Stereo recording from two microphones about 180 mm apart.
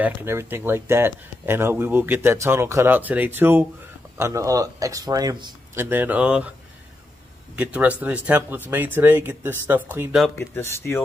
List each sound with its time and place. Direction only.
0.0 s speech: 15° right (ahead or behind)
5.9 s speech: 10° right (ahead or behind)
7.5 s speech: 10° right (ahead or behind)
10.5 s speech: 15° left (ahead or behind)